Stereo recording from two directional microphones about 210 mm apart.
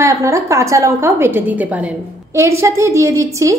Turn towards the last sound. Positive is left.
turn(degrees=-15)  # may be behind; listen again after turning